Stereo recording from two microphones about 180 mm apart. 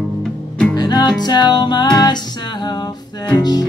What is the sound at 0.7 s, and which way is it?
Music, 25° left (ahead or behind).